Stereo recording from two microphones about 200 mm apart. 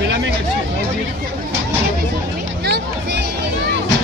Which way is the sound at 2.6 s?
55° right (ahead or behind).